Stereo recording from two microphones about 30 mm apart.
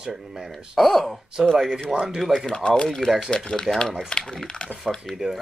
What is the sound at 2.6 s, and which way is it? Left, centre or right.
Speech, left.